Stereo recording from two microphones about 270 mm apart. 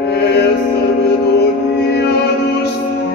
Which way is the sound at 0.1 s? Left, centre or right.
Left.